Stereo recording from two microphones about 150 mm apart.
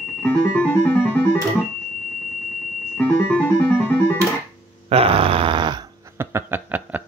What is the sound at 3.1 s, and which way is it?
Music, 10° left (ahead or behind).